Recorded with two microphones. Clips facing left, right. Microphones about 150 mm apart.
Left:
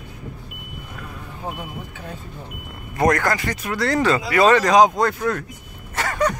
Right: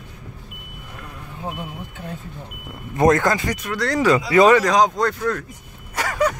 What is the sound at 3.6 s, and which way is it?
Speech, 5° left (ahead or behind).